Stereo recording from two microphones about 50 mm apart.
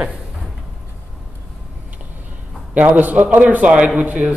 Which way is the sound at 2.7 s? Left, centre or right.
Right.